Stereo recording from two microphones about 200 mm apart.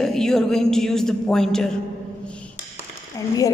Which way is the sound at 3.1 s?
15° left (ahead or behind).